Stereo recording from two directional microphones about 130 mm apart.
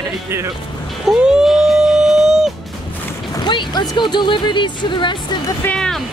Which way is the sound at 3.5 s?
35° left (ahead or behind).